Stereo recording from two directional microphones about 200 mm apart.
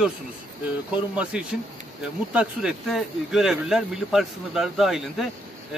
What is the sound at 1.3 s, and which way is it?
A man's voice, 5° right (ahead or behind).